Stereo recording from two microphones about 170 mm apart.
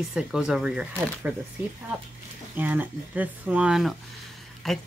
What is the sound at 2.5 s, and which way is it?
Speech, 10° right (ahead or behind).